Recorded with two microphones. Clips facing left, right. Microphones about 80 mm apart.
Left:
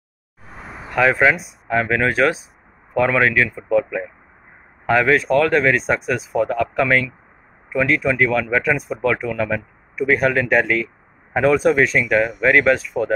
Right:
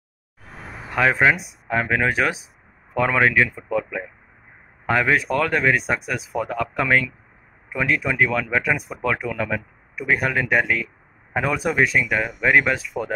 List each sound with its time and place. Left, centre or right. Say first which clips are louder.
0.9 s speech: left 2 dB; centre
4.8 s speech: left 4 dB; centre